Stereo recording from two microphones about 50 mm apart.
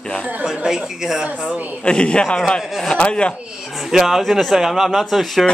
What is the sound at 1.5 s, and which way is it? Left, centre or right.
Speech, right.